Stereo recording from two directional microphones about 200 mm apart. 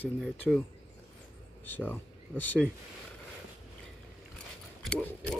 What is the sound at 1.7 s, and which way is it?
Speech, 10° left (ahead or behind).